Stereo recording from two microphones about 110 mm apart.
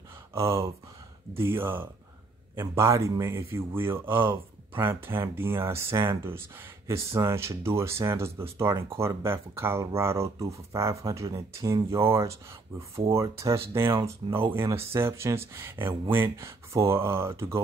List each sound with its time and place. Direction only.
0.3 s speech: 25° right (ahead or behind)